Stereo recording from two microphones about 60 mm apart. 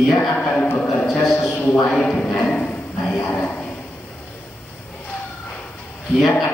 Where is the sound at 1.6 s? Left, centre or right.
Left.